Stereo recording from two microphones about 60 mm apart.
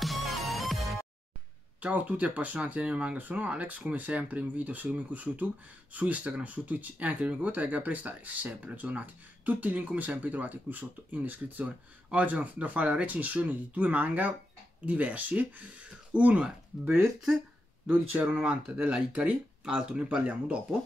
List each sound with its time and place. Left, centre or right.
0.0 s music: centre
1.8 s speech: right